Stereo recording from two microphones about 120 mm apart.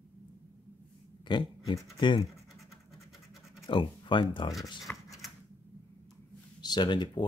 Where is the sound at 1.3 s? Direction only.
40° left (ahead or behind).